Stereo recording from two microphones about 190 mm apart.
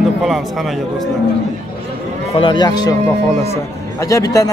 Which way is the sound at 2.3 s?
25° left (ahead or behind).